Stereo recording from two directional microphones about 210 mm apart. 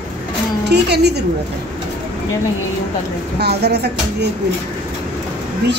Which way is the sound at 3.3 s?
50° right (ahead or behind).